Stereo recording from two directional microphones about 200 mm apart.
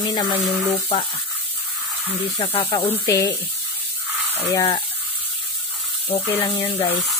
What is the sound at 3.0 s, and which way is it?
Speech, 15° left (ahead or behind).